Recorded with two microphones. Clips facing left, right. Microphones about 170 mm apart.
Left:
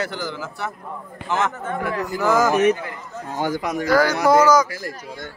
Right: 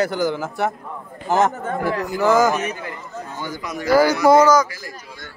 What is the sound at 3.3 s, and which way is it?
Speech, 80° left.